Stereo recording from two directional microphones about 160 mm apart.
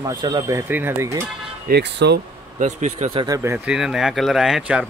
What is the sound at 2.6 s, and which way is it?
Speech, 50° right (ahead or behind).